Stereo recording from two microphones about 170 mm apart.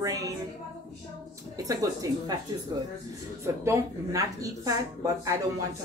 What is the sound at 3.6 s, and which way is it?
A woman's voice, 20° right (ahead or behind).